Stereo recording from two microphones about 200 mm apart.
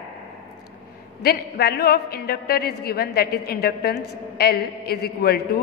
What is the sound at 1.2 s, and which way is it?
A man's voice, 50° left (ahead or behind).